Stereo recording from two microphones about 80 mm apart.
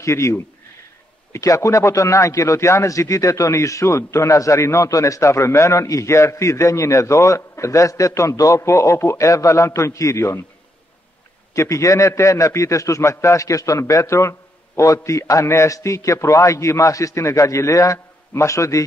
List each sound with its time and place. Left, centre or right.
0.0 s a man's voice: left
11.5 s a man's voice: left